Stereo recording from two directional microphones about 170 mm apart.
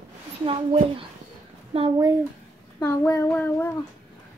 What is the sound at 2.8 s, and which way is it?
Child singing, 15° left (ahead or behind).